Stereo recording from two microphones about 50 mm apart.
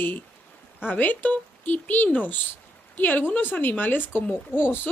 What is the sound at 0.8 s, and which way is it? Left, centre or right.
A woman's voice, left.